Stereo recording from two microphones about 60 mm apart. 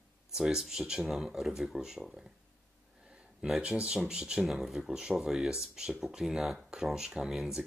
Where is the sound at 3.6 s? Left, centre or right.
Centre.